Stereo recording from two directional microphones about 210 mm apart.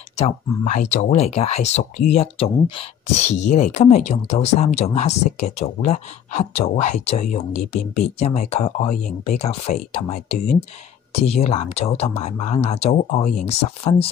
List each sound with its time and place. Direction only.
0.2 s speech: 35° left (ahead or behind)